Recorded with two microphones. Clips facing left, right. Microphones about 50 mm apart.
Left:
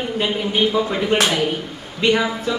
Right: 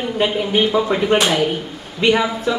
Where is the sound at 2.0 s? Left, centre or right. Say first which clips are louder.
Right 2 dB; centre.